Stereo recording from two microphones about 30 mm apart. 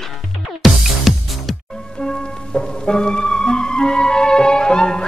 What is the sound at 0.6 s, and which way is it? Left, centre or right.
Music, centre.